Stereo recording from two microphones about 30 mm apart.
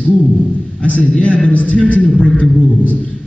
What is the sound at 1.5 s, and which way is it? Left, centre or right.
Speech, left.